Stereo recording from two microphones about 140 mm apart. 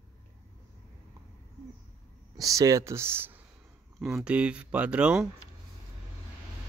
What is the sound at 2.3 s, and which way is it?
Speech, 25° right (ahead or behind).